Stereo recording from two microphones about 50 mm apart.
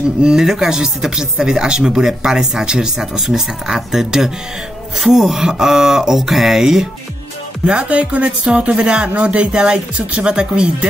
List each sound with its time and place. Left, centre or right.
0.2 s speech: centre
7.6 s speech: right